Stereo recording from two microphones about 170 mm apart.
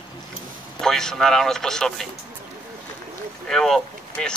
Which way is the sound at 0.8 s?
5° left (ahead or behind).